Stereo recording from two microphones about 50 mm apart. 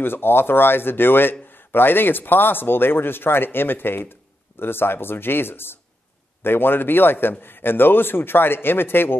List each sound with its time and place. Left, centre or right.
0.0 s a man's voice: left